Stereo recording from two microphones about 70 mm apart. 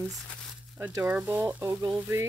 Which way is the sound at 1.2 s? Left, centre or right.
Right.